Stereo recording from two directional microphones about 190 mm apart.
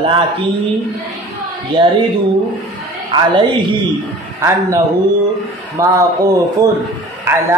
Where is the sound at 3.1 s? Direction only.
25° right (ahead or behind).